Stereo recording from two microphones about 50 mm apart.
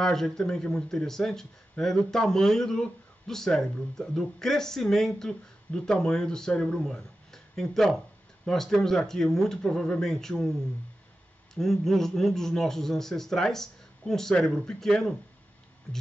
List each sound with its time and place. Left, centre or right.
0.0 s speech: centre
6.8 s a sound: centre
8.5 s speech: centre
15.9 s speech: left